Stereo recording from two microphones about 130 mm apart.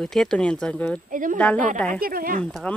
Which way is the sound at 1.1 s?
90° right.